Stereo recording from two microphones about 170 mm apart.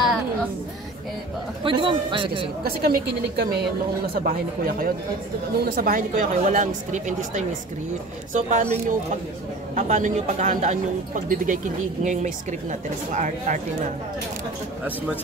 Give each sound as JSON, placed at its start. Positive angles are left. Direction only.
{"t": 1.6, "sound": "a man's voice", "side_deg": -30}
{"t": 2.6, "sound": "a woman's voice", "side_deg": -65}